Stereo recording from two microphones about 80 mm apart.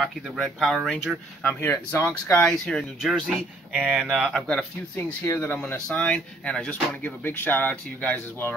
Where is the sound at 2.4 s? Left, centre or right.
Centre.